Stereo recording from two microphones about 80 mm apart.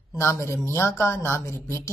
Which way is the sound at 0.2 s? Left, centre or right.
Left.